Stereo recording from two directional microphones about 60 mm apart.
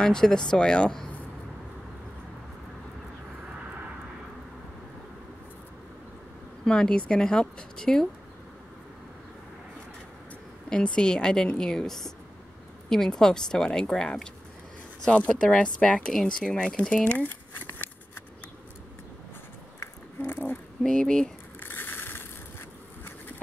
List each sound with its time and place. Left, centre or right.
0.0 s a woman's voice: centre
6.6 s a woman's voice: centre
10.7 s a woman's voice: centre
16.4 s crumpling: centre; by 18.2 s left
20.2 s speech: left
20.8 s a woman's voice: centre
21.5 s a sound: left